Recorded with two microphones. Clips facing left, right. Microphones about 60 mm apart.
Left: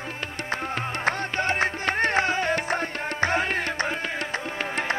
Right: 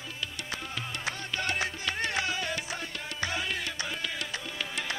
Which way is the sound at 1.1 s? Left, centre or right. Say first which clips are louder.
Left 8 dB; left.